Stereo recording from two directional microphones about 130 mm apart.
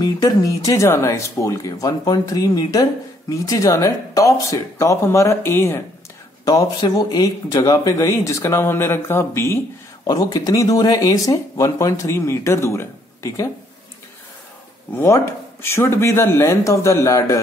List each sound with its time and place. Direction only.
0.0 s speech: 30° left (ahead or behind)
6.4 s speech: 30° left (ahead or behind)
15.0 s speech: 20° left (ahead or behind)